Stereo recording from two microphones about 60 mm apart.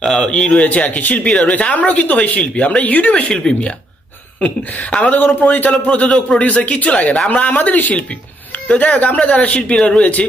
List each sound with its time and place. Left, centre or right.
0.0 s speech: centre; by 10.2 s left